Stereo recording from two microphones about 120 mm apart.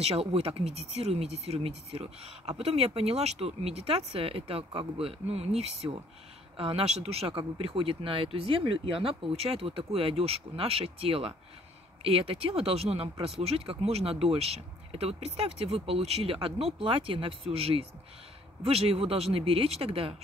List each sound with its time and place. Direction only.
0.0 s speech: 55° right (ahead or behind)